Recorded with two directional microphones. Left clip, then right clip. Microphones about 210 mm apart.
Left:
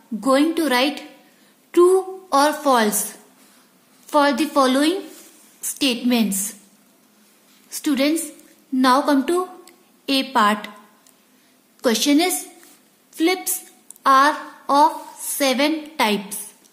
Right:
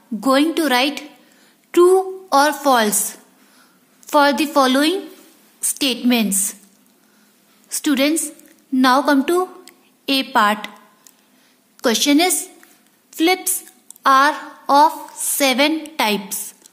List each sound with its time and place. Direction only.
0.2 s a woman's voice: 15° right (ahead or behind)
7.7 s a woman's voice: 10° right (ahead or behind)
11.8 s a woman's voice: 10° right (ahead or behind)